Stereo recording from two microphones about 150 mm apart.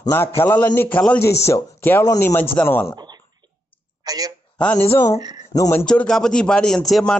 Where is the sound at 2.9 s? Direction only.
30° right (ahead or behind).